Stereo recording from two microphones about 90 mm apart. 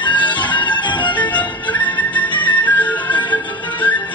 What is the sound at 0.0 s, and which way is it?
Music, 60° left (ahead or behind).